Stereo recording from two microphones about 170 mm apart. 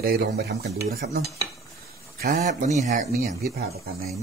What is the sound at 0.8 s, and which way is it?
Stir, 70° right (ahead or behind).